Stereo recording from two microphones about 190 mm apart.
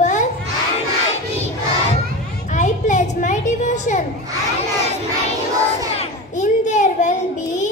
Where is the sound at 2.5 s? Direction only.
40° left (ahead or behind).